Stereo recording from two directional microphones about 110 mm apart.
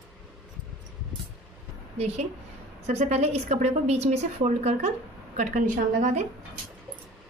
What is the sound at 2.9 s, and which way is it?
A woman's voice, 70° right (ahead or behind).